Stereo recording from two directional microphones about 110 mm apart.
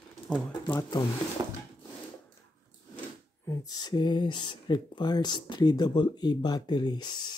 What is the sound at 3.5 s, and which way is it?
Speech, 35° left (ahead or behind).